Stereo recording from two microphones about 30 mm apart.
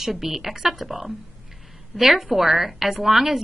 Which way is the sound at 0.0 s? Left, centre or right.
Centre.